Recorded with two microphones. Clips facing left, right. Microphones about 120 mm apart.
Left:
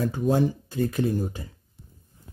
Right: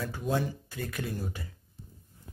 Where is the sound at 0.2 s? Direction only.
45° left (ahead or behind).